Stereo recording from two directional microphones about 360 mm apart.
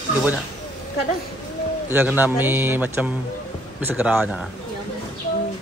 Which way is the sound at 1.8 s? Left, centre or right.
Centre.